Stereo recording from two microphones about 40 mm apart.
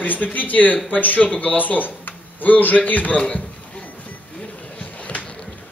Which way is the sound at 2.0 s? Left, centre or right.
Left.